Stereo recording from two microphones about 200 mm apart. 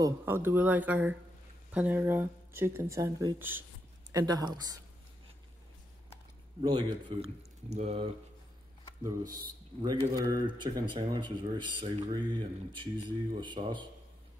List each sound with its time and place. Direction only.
0.0 s speech: 10° right (ahead or behind)
6.6 s speech: 20° right (ahead or behind)
9.3 s speech: 20° right (ahead or behind)